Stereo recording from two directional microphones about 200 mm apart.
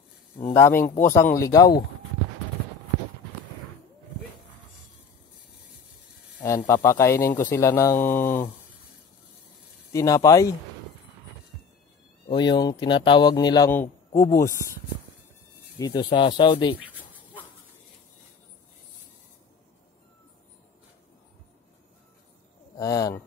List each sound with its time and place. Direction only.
0.5 s speech: 10° left (ahead or behind)
0.8 s speech: 45° left (ahead or behind)
1.1 s speech: 15° left (ahead or behind)
6.4 s speech: 15° left (ahead or behind)
9.9 s speech: 15° left (ahead or behind)
12.3 s a man's voice: 20° left (ahead or behind)
15.8 s speech: 20° left (ahead or behind)
22.8 s speech: 20° left (ahead or behind)